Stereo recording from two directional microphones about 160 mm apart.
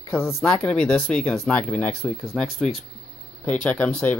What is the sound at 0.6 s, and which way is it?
Speech, 5° left (ahead or behind).